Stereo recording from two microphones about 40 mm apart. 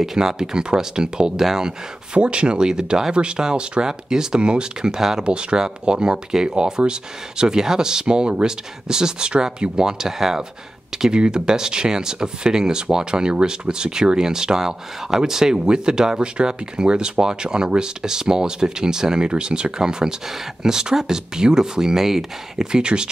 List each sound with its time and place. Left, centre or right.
0.0 s speech: centre
2.1 s speech: right; by 10.4 s centre
11.0 s speech: right